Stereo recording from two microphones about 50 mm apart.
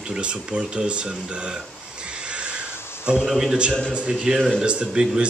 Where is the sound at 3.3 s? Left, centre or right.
Centre.